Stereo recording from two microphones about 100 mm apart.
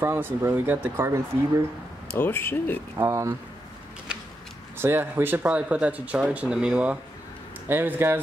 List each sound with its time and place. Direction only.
0.0 s speech: 25° right (ahead or behind)
2.1 s speech: 20° left (ahead or behind)
3.0 s speech: 30° right (ahead or behind)
4.7 s speech: 20° right (ahead or behind)